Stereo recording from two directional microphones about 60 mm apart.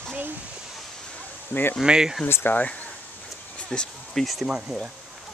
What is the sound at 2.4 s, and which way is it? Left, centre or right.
Speech, left.